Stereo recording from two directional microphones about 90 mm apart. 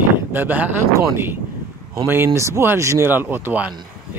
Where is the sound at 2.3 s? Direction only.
30° right (ahead or behind).